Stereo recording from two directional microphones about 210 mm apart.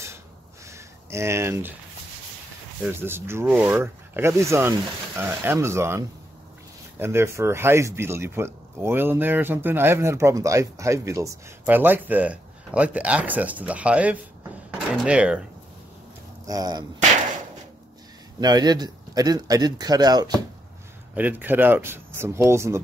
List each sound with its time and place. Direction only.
0.7 s a sound: 15° right (ahead or behind)
2.8 s speech: 10° right (ahead or behind)
16.4 s speech: 20° right (ahead or behind)
18.4 s speech: 20° right (ahead or behind)
21.1 s speech: 10° right (ahead or behind)